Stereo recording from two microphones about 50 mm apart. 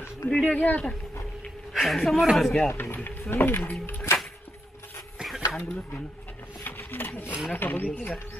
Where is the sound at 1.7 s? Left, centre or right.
Centre.